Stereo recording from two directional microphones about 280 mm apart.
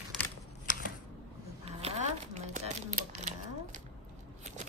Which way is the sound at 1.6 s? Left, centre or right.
Right.